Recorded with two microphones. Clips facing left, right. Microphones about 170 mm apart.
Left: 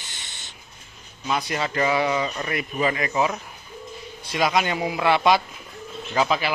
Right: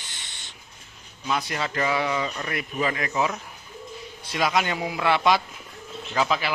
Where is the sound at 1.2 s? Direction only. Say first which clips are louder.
Left 2 dB; 15° left (ahead or behind).